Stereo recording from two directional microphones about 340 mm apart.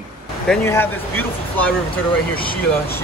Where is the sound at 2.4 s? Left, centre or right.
Left.